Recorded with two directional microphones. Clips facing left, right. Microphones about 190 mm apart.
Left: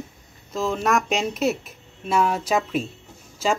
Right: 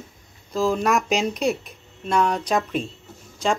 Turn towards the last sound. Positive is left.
turn(degrees=5)  # may be behind; listen again after turning